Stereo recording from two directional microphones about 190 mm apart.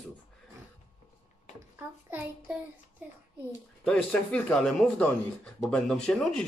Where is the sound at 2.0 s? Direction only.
10° right (ahead or behind).